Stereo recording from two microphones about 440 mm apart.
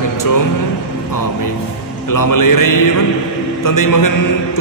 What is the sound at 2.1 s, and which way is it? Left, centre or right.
A man's voice, left.